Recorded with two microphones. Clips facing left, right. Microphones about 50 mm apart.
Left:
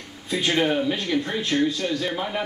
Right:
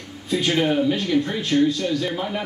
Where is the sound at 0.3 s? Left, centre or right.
Centre.